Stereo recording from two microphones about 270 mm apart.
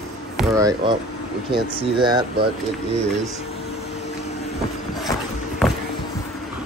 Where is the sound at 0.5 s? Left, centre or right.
Centre.